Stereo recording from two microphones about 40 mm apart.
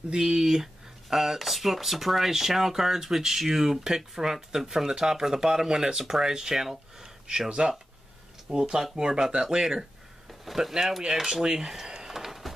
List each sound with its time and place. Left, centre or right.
0.1 s speech: centre
7.2 s speech: right; by 12.5 s centre